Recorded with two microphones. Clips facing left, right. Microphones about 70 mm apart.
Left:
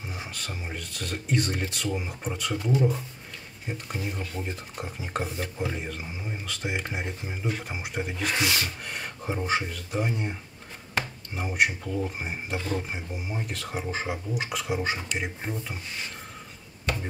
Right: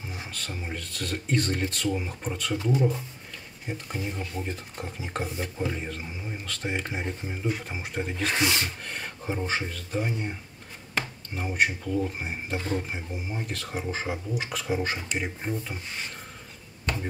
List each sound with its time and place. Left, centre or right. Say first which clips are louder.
0.3 s speech: right 1 dB; centre
4.2 s speech: right 1 dB; centre
4.5 s speech: even; centre
8.4 s speech: right 1 dB; right
8.8 s speech: even; centre